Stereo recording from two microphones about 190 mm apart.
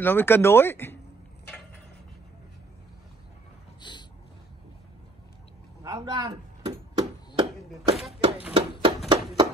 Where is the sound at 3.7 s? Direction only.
25° left (ahead or behind).